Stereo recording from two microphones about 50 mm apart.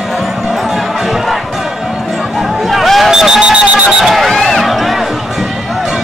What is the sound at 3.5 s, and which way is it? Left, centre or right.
Alarm, right.